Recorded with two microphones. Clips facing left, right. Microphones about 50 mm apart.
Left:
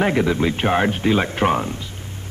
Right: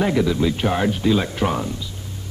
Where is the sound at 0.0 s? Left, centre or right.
Left.